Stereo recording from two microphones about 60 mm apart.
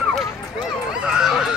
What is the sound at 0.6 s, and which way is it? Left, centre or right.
Honk, centre.